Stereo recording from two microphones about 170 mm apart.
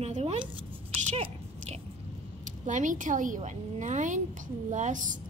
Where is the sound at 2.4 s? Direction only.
50° right (ahead or behind).